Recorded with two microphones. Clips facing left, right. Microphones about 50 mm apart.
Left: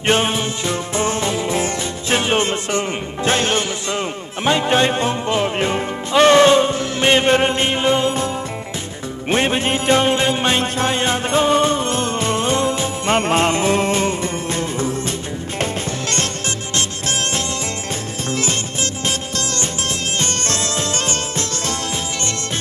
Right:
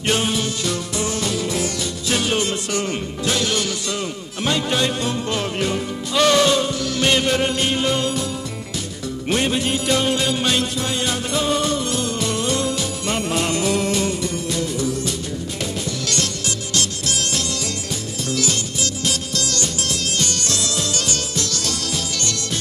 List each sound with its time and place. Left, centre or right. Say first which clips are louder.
0.0 s music: left 3 dB; left
9.3 s music: left 3 dB; left
18.3 s music: left 1 dB; left